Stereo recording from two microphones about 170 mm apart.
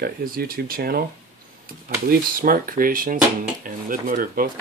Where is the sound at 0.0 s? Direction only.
65° right (ahead or behind).